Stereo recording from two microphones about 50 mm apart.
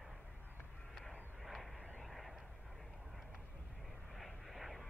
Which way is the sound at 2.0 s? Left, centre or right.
Centre.